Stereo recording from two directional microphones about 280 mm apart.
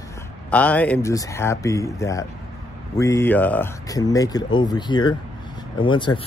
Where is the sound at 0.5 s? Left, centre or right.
Centre.